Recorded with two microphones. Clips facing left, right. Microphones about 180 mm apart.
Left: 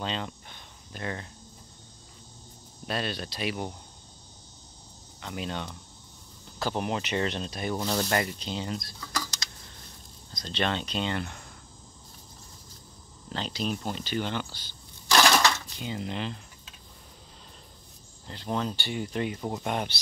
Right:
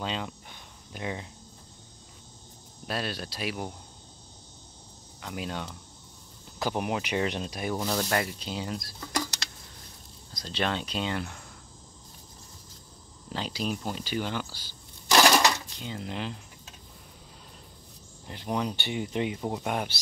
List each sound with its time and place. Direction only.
0.0 s cricket: 10° right (ahead or behind)
2.9 s speech: 5° right (ahead or behind)
5.2 s speech: 5° right (ahead or behind)
10.3 s speech: 5° right (ahead or behind)
13.3 s speech: 10° right (ahead or behind)
15.0 s coin: 15° right (ahead or behind)
15.8 s speech: centre (ahead or behind)
18.2 s speech: 15° right (ahead or behind)